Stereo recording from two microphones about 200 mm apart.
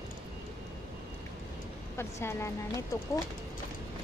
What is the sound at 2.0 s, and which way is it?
Speech, 10° left (ahead or behind).